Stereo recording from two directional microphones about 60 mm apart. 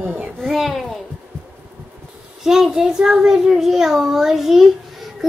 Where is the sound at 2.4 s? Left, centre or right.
Centre.